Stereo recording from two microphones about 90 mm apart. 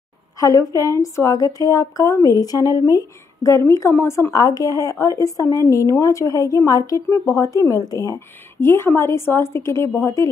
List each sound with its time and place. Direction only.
0.4 s a woman's voice: 40° left (ahead or behind)
4.3 s a woman's voice: 45° left (ahead or behind)